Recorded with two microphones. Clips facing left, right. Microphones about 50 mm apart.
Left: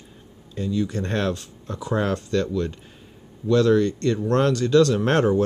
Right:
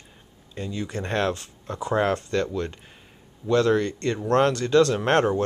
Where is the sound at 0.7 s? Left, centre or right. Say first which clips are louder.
Left 6 dB; right.